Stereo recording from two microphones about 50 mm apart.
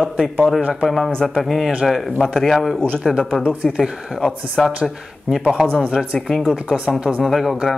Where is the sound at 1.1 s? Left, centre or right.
Centre.